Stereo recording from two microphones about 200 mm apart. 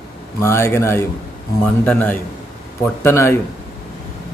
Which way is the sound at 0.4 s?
15° left (ahead or behind).